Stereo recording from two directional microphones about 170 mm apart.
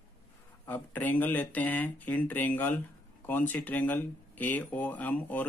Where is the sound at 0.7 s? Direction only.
10° left (ahead or behind).